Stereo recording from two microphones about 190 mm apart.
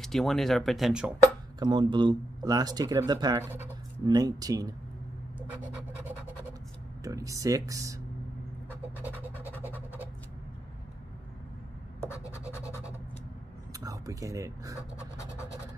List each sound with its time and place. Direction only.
0.0 s speech: centre (ahead or behind)
1.6 s speech: 25° right (ahead or behind)
9.6 s scratch: 10° right (ahead or behind)
12.2 s scratch: 15° left (ahead or behind)
13.7 s speech: 15° right (ahead or behind)